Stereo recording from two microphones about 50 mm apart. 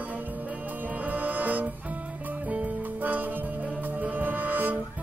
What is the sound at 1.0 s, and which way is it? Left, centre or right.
Music, right.